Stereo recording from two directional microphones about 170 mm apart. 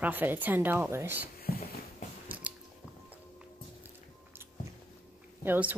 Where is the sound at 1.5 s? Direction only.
60° left (ahead or behind).